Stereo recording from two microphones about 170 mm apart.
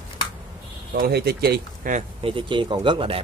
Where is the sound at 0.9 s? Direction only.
70° right (ahead or behind).